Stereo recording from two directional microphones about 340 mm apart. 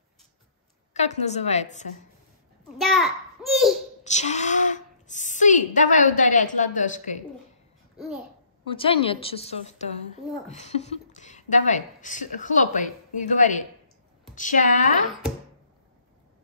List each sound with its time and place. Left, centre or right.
0.9 s a woman's voice: centre
2.8 s a child's voice: centre
4.0 s a woman's voice: centre
8.6 s a woman's voice: centre